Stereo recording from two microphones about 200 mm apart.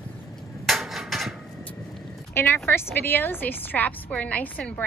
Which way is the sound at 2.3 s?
10° left (ahead or behind).